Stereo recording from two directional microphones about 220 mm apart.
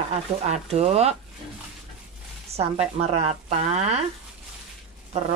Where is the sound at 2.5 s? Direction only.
25° right (ahead or behind).